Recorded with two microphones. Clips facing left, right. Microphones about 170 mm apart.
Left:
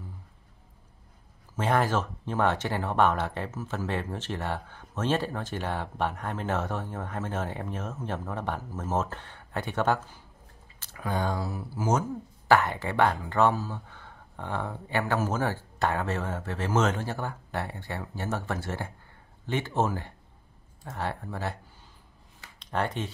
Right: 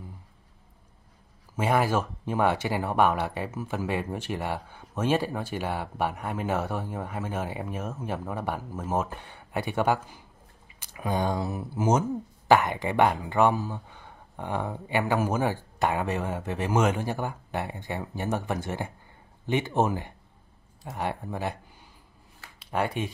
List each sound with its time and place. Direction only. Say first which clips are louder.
1.6 s speech: right 1 dB; 10° right (ahead or behind)
22.6 s speech: right 2 dB; 10° right (ahead or behind)